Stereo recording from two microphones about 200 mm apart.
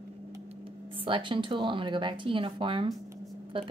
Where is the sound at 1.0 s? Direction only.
25° right (ahead or behind).